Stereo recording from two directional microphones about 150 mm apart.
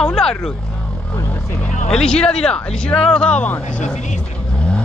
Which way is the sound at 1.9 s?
5° left (ahead or behind).